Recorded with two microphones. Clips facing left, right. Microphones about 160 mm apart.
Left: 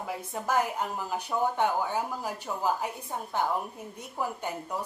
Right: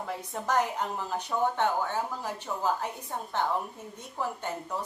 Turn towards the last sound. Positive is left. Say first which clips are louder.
# even
turn(degrees=10)  # may be behind; listen again after turning